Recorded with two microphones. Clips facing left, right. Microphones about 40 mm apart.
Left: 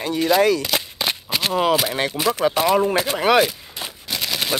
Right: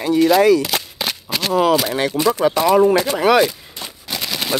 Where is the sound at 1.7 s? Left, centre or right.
Centre.